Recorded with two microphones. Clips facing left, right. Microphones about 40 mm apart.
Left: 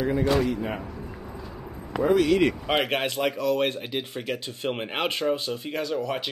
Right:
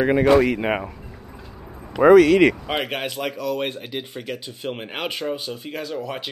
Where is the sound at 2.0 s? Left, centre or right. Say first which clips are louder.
Right 9 dB; right.